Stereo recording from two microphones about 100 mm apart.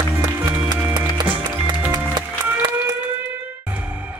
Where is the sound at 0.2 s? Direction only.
45° right (ahead or behind).